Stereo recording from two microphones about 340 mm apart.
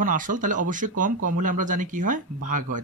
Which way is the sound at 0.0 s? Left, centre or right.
Right.